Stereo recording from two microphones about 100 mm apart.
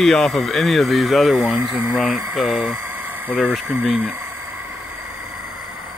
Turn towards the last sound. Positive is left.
turn(degrees=-10)  # may be behind; listen again after turning